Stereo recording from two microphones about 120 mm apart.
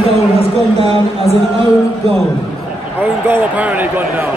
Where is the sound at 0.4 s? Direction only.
60° right (ahead or behind).